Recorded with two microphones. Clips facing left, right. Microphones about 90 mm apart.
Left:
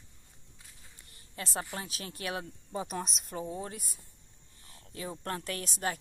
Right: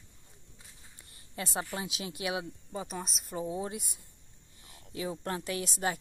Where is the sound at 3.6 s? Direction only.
20° right (ahead or behind).